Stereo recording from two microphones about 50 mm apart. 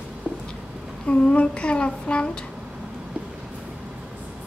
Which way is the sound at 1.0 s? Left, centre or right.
Left.